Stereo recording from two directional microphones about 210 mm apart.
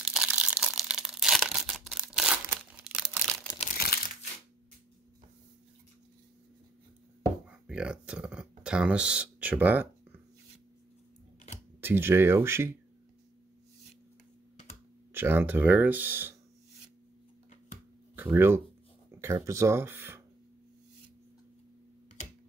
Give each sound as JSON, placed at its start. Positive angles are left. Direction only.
{"t": 0.0, "sound": "crumpling", "side_deg": 0}
{"t": 3.7, "sound": "crumpling", "side_deg": 45}
{"t": 7.4, "sound": "speech", "side_deg": -5}
{"t": 11.8, "sound": "speech", "side_deg": -10}
{"t": 15.1, "sound": "speech", "side_deg": -10}
{"t": 18.1, "sound": "speech", "side_deg": -10}